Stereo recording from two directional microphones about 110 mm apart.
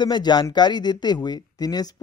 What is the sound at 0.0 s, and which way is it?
Speech, 40° left (ahead or behind).